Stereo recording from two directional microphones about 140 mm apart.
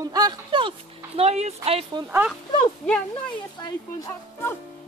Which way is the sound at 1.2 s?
50° right (ahead or behind).